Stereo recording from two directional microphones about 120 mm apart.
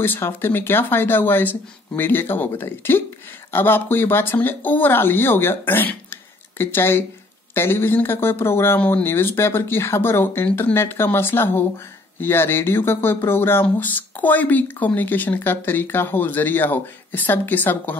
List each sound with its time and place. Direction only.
0.0 s speech: 15° left (ahead or behind)